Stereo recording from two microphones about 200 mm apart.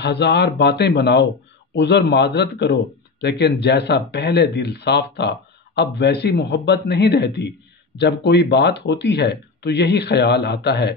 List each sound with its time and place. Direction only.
0.0 s speech: 60° left (ahead or behind)